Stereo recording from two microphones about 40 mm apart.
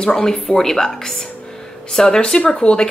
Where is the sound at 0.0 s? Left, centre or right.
Centre.